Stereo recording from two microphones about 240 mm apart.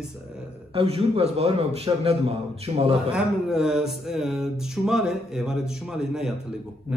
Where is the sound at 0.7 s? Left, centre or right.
Right.